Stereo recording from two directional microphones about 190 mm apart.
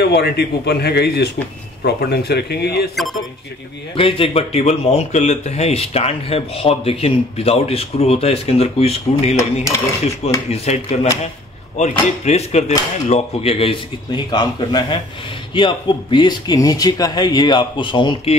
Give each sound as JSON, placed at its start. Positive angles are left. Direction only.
{"t": 0.0, "sound": "speech", "side_deg": 60}
{"t": 3.9, "sound": "speech", "side_deg": 30}
{"t": 10.5, "sound": "speech", "side_deg": 35}